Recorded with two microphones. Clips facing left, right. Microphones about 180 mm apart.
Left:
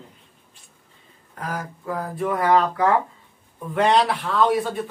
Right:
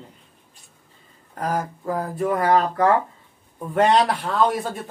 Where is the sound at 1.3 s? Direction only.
40° right (ahead or behind).